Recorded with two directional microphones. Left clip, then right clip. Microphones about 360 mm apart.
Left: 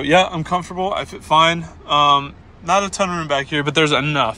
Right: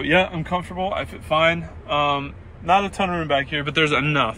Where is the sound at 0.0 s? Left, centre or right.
Left.